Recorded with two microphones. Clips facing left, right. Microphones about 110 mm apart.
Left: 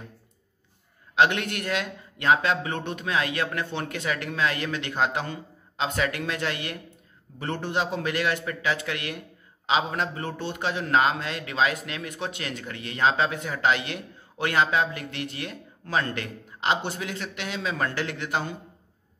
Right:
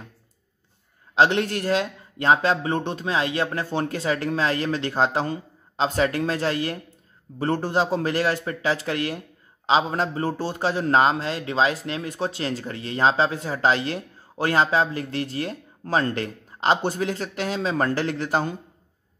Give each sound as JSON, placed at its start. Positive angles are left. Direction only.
{"t": 1.1, "sound": "a man's voice", "side_deg": -30}